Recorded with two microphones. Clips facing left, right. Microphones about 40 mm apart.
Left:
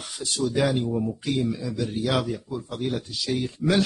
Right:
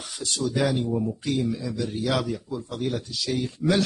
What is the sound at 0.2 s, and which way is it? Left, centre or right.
A man's voice, centre.